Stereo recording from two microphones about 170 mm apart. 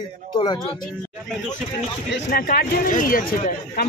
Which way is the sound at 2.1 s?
60° left (ahead or behind).